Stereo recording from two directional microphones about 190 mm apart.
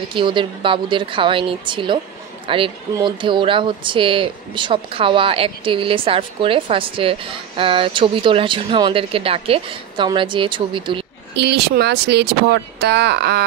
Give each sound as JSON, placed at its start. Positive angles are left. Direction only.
{"t": 0.1, "sound": "speech", "side_deg": -25}
{"t": 11.3, "sound": "speech", "side_deg": -60}